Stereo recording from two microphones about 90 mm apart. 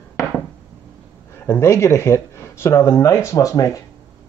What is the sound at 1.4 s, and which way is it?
Speech, 30° left (ahead or behind).